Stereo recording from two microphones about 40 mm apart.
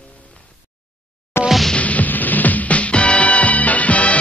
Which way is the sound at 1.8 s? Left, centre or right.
Left.